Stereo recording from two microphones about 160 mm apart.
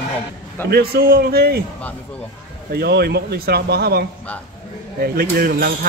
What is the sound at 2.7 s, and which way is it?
Speech, 75° right (ahead or behind).